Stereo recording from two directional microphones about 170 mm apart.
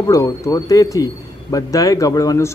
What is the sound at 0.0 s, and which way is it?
Speech, 20° left (ahead or behind).